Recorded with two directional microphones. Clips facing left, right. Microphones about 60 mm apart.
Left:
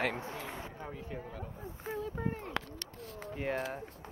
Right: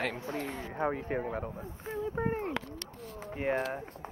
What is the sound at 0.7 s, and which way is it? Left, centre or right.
Speech, right.